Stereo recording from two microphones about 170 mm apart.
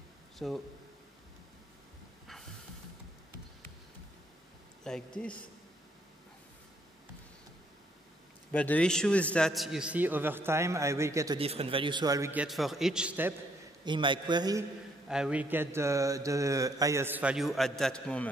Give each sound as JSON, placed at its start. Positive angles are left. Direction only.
{"t": 0.4, "sound": "a man's voice", "side_deg": 0}
{"t": 4.8, "sound": "a man's voice", "side_deg": 5}
{"t": 8.5, "sound": "mantra", "side_deg": 10}
{"t": 11.3, "sound": "a man's voice", "side_deg": -35}
{"t": 12.3, "sound": "a man's voice", "side_deg": -5}
{"t": 13.8, "sound": "a man's voice", "side_deg": -30}
{"t": 15.0, "sound": "mantra", "side_deg": -5}